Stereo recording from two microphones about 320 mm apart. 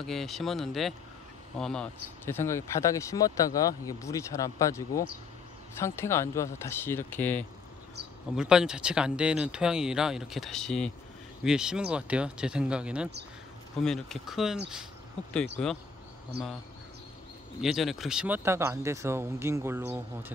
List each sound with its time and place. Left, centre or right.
0.0 s speech: centre
16.3 s speech: right
17.6 s speech: centre